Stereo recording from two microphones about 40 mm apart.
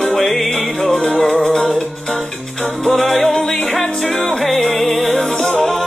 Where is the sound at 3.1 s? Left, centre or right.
Centre.